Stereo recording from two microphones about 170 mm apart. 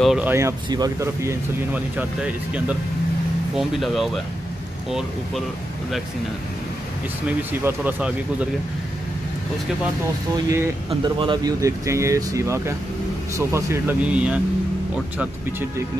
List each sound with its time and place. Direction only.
0.0 s speech: 5° right (ahead or behind)
7.2 s speech: 10° right (ahead or behind)
10.3 s speech: 20° right (ahead or behind)
10.9 s speech: 30° right (ahead or behind); by 14.4 s 5° right (ahead or behind)